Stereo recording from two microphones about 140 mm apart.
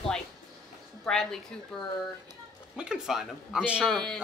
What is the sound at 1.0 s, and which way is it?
Speech, 5° left (ahead or behind).